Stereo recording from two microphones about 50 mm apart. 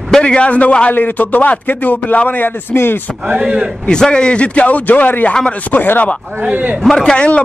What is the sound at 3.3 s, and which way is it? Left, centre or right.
Speech, right.